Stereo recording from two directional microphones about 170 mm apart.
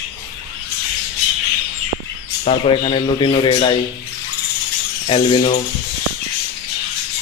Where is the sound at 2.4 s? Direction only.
35° left (ahead or behind).